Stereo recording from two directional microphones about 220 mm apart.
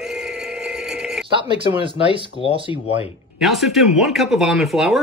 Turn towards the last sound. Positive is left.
turn(degrees=0)  # may be behind; listen again after turning